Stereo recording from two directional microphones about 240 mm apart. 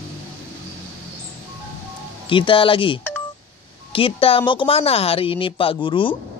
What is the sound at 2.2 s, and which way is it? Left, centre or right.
Speech, left.